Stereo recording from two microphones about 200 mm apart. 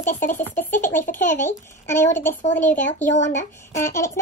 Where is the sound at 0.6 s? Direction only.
10° left (ahead or behind).